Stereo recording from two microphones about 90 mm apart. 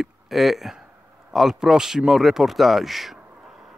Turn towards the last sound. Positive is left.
turn(degrees=-5)  # may be behind; listen again after turning